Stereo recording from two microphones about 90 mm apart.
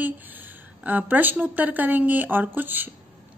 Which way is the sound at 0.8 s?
20° right (ahead or behind).